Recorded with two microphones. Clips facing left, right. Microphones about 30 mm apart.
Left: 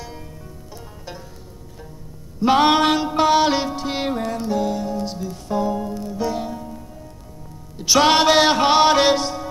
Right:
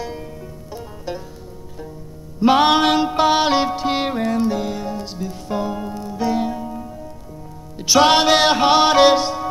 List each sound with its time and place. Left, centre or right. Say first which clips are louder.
2.4 s mantra: right 1 dB; centre
5.0 s music: even; centre
7.8 s music: right 1 dB; centre